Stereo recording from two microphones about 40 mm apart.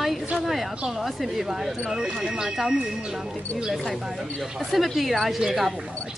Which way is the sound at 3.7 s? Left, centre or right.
Centre.